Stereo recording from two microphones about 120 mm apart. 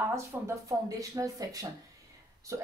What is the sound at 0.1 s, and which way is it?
A woman's voice, 30° right (ahead or behind).